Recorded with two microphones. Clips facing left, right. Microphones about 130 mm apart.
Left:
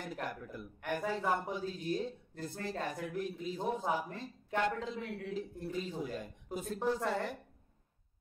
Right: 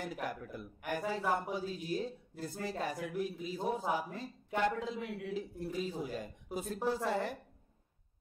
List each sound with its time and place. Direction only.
0.0 s a man's voice: 5° right (ahead or behind)